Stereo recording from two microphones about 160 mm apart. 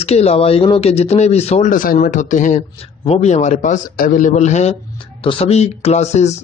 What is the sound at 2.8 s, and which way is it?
A man's voice, 40° left (ahead or behind).